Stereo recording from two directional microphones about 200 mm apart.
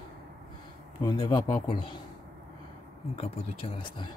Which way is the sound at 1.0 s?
20° left (ahead or behind).